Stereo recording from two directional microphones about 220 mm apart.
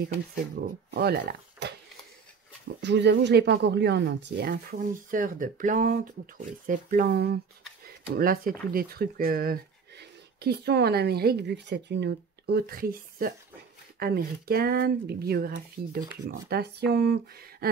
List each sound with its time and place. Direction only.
0.6 s speech: 45° right (ahead or behind)
2.8 s speech: 50° right (ahead or behind)